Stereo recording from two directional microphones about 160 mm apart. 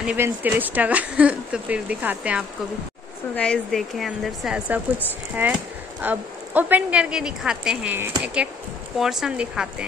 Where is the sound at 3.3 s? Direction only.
5° left (ahead or behind).